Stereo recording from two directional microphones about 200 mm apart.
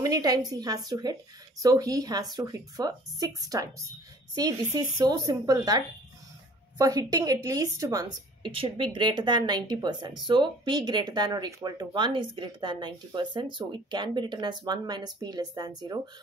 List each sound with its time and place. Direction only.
0.0 s a woman's voice: 20° right (ahead or behind)
6.8 s speech: 15° right (ahead or behind)